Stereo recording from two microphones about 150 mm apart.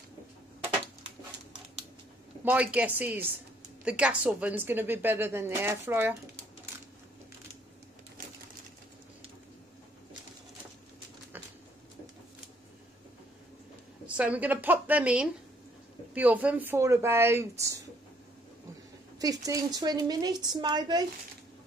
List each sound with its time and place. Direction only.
2.4 s speech: 10° right (ahead or behind)
14.0 s speech: 10° right (ahead or behind)
19.1 s speech: 25° right (ahead or behind)